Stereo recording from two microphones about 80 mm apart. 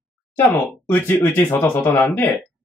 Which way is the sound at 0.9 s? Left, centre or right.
Left.